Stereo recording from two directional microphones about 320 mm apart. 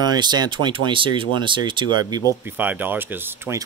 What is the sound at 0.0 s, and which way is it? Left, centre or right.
Speech, centre.